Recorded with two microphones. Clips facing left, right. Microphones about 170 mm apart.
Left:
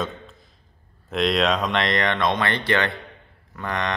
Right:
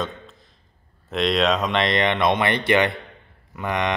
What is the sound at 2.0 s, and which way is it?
A man's voice, 15° right (ahead or behind).